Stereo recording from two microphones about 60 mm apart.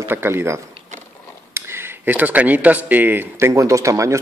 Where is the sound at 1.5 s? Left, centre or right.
Right.